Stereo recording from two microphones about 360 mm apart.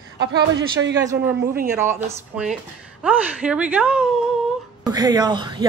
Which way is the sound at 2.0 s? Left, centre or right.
Centre.